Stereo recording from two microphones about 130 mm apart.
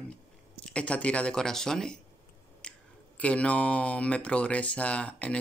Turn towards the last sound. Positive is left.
turn(degrees=10)  # may be behind; listen again after turning